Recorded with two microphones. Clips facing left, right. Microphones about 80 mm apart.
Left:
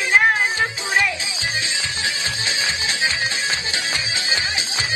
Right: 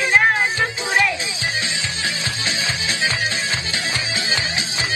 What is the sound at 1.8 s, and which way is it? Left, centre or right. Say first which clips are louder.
Music: even; left.